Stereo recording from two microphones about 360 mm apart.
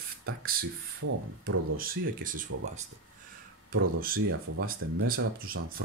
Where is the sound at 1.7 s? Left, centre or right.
Right.